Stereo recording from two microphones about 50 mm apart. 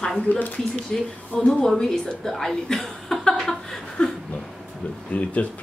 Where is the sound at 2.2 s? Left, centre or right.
Centre.